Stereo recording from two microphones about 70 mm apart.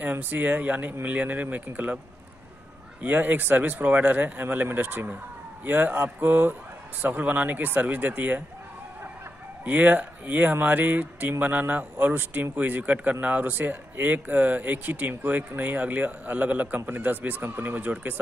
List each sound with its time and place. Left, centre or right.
0.0 s speech: right
3.0 s speech: right
9.7 s speech: right